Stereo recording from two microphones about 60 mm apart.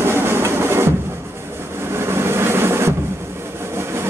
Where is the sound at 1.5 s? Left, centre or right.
Right.